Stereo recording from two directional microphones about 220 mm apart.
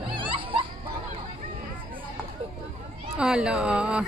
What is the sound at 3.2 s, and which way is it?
Speech, 5° right (ahead or behind).